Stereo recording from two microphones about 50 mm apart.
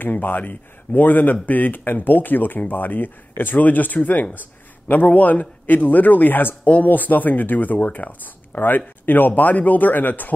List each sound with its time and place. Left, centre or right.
0.0 s speech: left